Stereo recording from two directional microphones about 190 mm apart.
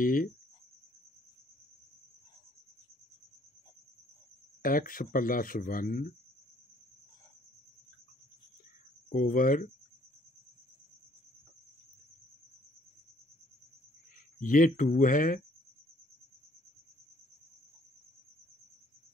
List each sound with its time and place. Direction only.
0.0 s speech: 45° left (ahead or behind)
4.6 s speech: 45° left (ahead or behind)
9.1 s speech: 45° left (ahead or behind)
14.4 s speech: 45° left (ahead or behind)